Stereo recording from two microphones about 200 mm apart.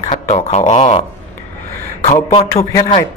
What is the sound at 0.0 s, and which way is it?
Speech, 35° left (ahead or behind).